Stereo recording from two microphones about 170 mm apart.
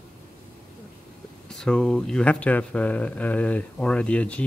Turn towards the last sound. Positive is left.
turn(degrees=5)  # may be behind; listen again after turning